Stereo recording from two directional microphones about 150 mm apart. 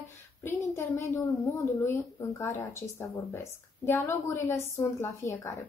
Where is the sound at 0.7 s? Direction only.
20° left (ahead or behind).